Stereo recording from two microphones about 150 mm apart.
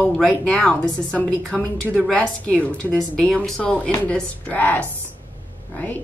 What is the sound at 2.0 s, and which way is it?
A woman's voice, 10° left (ahead or behind).